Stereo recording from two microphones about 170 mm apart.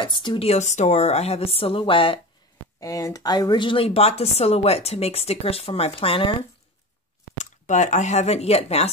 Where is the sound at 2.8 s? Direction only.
20° left (ahead or behind).